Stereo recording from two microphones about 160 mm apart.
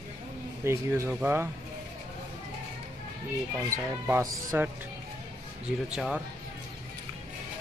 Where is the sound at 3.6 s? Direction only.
15° right (ahead or behind).